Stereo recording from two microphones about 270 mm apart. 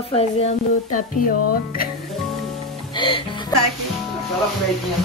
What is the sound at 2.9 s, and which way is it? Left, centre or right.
Music, centre.